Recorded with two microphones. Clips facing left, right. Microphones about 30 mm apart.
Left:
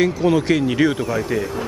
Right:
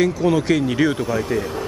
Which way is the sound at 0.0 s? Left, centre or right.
Centre.